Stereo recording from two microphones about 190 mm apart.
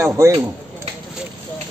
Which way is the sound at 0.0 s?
15° right (ahead or behind).